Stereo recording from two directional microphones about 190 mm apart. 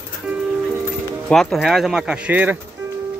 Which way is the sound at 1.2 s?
Centre (ahead or behind).